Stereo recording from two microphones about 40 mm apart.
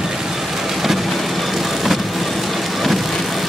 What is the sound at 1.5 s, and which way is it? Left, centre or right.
Vehicle, centre.